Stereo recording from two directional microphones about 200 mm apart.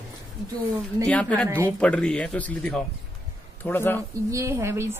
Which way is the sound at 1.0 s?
5° left (ahead or behind).